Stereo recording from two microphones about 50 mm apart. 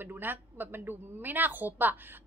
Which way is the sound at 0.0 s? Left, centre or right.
Right.